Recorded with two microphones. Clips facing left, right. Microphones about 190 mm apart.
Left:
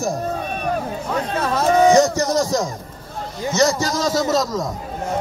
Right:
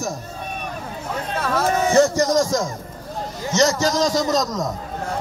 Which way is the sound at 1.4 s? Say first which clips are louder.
Left 4 dB; 15° left (ahead or behind).